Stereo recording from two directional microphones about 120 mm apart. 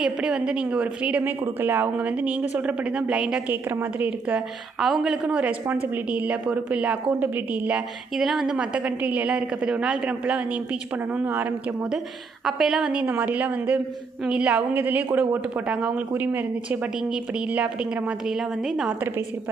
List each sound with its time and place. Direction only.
0.0 s a woman's voice: 5° right (ahead or behind)
4.7 s a woman's voice: centre (ahead or behind)
12.4 s a woman's voice: centre (ahead or behind)